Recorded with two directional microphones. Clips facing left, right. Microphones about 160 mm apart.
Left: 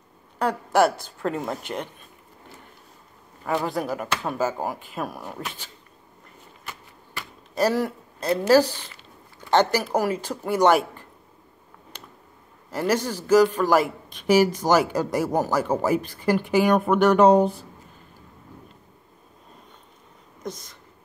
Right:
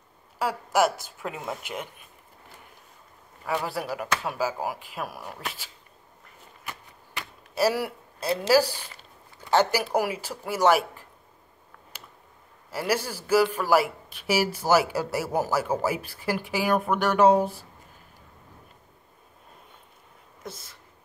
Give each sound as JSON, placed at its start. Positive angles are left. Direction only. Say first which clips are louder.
{"t": 0.7, "sound": "speech", "louder": "left 3 dB", "side_deg": -5}
{"t": 3.6, "sound": "speech", "louder": "left 4 dB", "side_deg": 0}
{"t": 7.2, "sound": "a man's voice", "louder": "left 2 dB", "side_deg": -10}
{"t": 11.9, "sound": "a sound", "louder": "left 3 dB", "side_deg": -5}
{"t": 12.7, "sound": "a man's voice", "louder": "left 4 dB", "side_deg": -10}
{"t": 20.4, "sound": "speech", "louder": "left 6 dB", "side_deg": -5}